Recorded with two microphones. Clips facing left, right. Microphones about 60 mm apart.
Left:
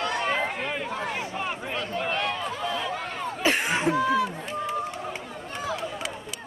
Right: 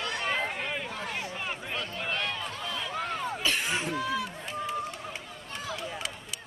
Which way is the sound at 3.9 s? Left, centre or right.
Centre.